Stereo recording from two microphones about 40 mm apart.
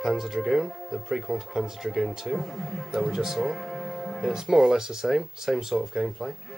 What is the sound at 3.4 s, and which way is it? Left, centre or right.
Music, centre.